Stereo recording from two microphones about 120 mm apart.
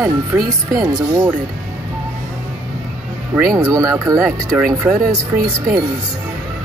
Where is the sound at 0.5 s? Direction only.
30° right (ahead or behind).